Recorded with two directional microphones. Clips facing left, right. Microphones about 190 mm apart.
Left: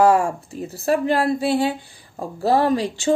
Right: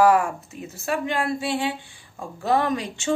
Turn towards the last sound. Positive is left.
turn(degrees=30)  # may be behind; listen again after turning